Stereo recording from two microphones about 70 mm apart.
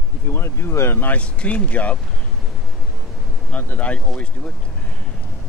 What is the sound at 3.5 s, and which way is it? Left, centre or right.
Speech, left.